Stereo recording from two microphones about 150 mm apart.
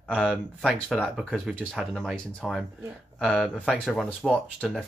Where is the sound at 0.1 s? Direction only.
5° left (ahead or behind).